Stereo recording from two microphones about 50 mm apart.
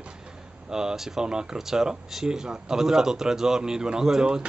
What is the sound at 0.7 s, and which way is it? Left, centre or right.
Speech, centre.